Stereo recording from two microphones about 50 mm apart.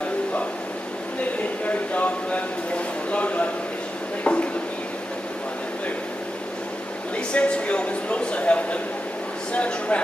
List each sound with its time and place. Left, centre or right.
1.7 s speech: left
4.2 s a sound: left
7.2 s speech: left